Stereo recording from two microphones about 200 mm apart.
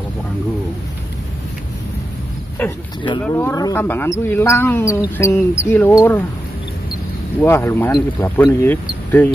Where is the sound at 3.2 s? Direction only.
10° left (ahead or behind).